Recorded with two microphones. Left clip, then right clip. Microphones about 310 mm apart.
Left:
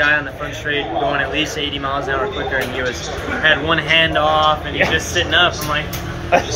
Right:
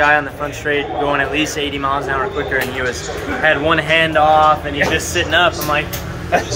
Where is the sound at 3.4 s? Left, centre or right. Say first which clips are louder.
Right 1 dB; centre.